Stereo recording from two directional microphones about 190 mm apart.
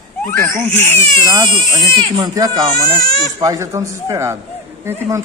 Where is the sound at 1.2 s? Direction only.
20° right (ahead or behind).